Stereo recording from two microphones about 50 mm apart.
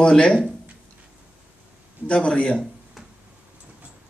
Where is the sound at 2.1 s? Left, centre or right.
Left.